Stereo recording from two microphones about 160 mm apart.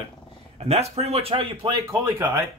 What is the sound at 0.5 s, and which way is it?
Speech, 40° right (ahead or behind).